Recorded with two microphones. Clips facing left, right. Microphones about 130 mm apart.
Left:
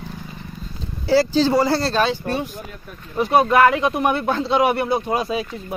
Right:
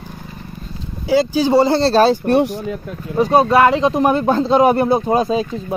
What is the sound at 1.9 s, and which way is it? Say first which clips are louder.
Speech: right 7 dB; 35° right (ahead or behind).